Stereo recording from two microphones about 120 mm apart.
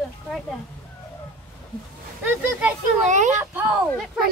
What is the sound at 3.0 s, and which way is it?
Speech, 90° right.